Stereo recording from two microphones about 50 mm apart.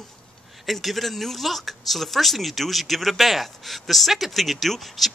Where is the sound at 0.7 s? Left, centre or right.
Centre.